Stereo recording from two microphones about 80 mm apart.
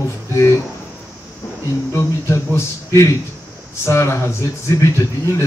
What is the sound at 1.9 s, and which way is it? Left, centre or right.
A man's voice, left.